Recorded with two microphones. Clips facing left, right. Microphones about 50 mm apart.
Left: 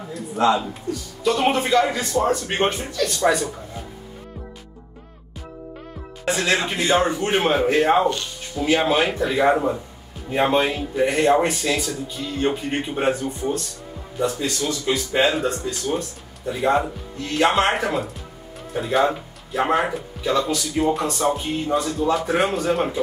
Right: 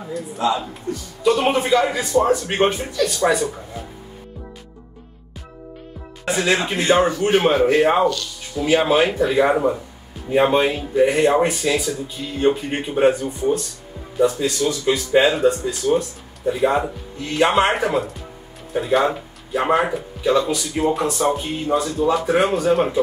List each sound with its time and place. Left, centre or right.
0.4 s a man's voice: left
0.9 s speech: right
1.2 s speech: centre
6.2 s speech: centre
8.1 s speech: left
8.6 s speech: centre